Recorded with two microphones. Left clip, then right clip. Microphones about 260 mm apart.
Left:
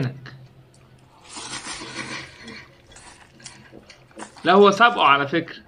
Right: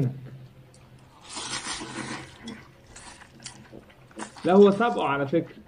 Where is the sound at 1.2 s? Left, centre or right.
Centre.